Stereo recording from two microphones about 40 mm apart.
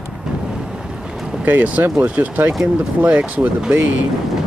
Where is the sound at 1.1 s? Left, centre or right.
Centre.